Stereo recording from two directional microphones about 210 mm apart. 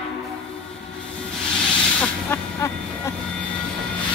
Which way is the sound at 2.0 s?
10° left (ahead or behind).